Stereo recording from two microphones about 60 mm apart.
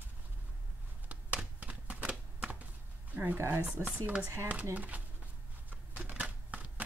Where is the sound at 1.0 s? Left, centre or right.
Right.